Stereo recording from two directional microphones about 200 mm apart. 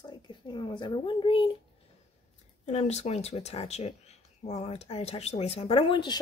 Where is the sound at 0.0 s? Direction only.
25° left (ahead or behind).